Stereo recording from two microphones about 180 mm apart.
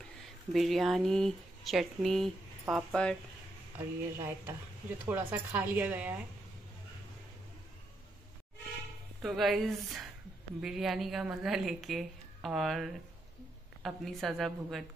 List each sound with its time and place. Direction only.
0.5 s a woman's voice: centre (ahead or behind)
3.7 s speech: 15° right (ahead or behind)
9.2 s a woman's voice: centre (ahead or behind)